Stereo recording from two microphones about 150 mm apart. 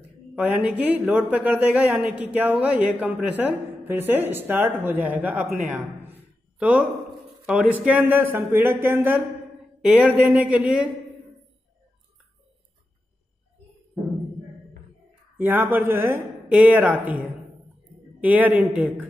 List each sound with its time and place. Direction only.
0.4 s speech: 10° right (ahead or behind)
15.3 s speech: 15° right (ahead or behind)
18.2 s speech: 10° right (ahead or behind)